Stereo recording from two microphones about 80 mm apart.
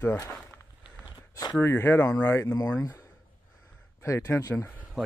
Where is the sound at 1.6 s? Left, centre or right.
Left.